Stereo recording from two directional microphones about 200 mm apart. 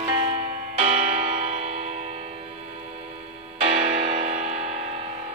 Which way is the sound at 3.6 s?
30° right (ahead or behind).